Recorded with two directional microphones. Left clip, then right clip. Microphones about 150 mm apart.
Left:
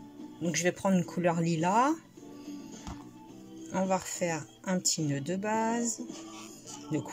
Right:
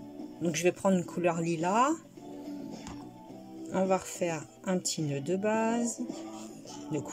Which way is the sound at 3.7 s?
10° right (ahead or behind).